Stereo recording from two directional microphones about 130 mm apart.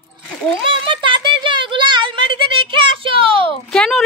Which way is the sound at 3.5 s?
5° left (ahead or behind).